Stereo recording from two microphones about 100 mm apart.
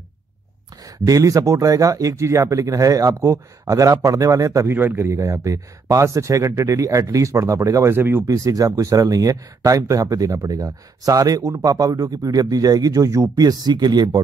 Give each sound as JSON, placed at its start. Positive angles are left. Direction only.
{"t": 0.8, "sound": "speech", "side_deg": -35}
{"t": 8.3, "sound": "speech", "side_deg": -35}